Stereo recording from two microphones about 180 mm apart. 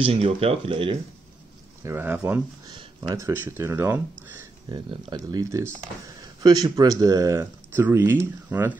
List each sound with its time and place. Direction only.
0.0 s speech: 30° right (ahead or behind)
1.9 s speech: 10° right (ahead or behind)
2.7 s speech: 20° right (ahead or behind)
4.3 s a sound: 10° right (ahead or behind)
4.7 s speech: 20° right (ahead or behind)